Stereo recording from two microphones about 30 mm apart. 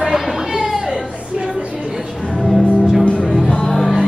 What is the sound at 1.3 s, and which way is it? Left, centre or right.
Music, right.